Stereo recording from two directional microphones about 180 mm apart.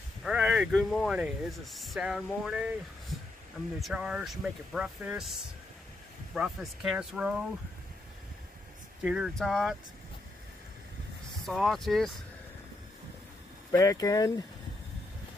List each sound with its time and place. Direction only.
0.2 s speech: 5° right (ahead or behind)
3.1 s a sound: centre (ahead or behind)
3.8 s speech: 5° right (ahead or behind)
9.0 s speech: 5° right (ahead or behind)
11.4 s speech: centre (ahead or behind)
13.7 s speech: 20° left (ahead or behind)